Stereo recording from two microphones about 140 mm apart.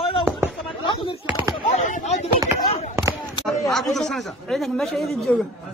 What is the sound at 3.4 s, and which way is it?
Speech, centre (ahead or behind).